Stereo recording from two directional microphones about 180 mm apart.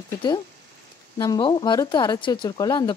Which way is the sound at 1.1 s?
20° left (ahead or behind).